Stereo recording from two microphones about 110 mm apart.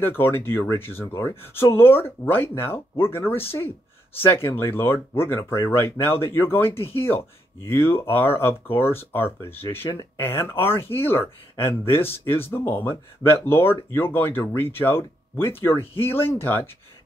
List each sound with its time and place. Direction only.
0.0 s speech: 20° left (ahead or behind)